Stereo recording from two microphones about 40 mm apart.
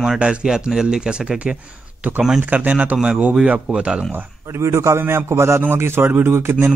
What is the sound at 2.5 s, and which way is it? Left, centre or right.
Speech, right.